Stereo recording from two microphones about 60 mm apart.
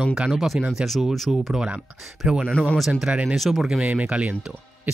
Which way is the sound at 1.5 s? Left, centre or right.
Centre.